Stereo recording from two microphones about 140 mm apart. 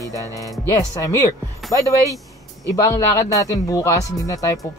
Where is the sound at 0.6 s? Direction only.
25° left (ahead or behind).